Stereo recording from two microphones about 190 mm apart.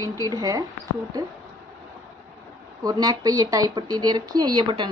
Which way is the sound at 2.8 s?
20° right (ahead or behind).